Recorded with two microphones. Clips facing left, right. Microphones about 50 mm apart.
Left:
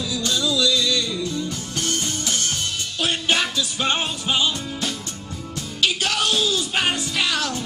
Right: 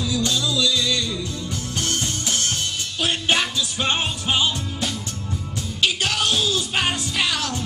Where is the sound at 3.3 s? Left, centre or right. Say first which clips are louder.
Even; centre.